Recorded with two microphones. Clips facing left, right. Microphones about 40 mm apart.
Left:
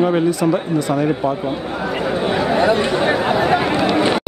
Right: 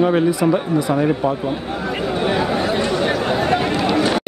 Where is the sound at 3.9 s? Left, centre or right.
Left.